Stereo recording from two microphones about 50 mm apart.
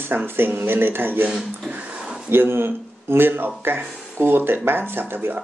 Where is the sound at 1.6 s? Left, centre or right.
Right.